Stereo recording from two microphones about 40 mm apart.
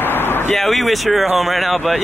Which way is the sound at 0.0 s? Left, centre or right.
Left.